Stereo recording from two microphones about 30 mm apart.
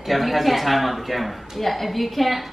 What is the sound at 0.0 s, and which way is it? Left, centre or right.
Speech, centre.